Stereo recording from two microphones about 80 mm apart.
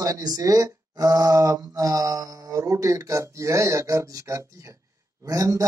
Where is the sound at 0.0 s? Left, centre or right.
Right.